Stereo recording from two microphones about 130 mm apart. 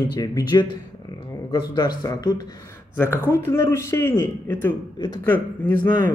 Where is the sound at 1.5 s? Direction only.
35° left (ahead or behind).